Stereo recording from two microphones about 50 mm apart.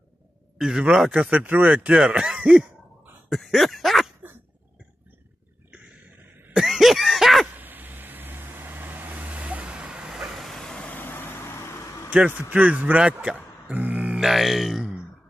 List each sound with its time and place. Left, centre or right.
0.6 s a man's voice: centre
1.3 s speech: right; by 2.5 s centre
3.3 s throat clearing: centre
6.5 s cough: centre
7.5 s vehicle: right; by 10.1 s centre
10.3 s vehicle: centre
11.0 s vehicle: left
12.4 s speech: right
13.7 s grunt: right
14.2 s grunt: centre